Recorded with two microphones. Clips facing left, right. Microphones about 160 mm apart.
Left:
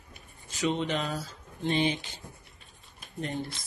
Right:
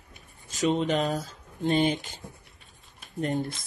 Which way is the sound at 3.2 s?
45° right (ahead or behind).